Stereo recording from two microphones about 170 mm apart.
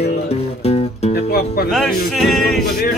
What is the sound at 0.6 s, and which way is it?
Music, 40° left (ahead or behind).